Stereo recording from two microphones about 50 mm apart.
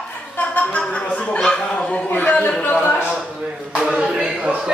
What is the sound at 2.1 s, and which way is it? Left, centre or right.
Speech, left.